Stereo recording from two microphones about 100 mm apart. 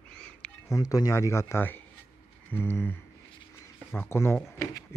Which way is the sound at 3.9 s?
25° left (ahead or behind).